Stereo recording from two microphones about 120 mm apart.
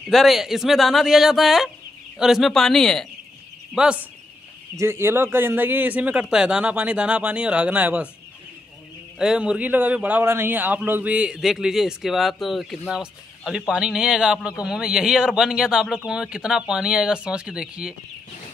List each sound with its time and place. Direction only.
0.1 s speech: centre (ahead or behind)
3.7 s a man's voice: 5° right (ahead or behind)
4.7 s a man's voice: 20° right (ahead or behind)
9.2 s a man's voice: 5° right (ahead or behind)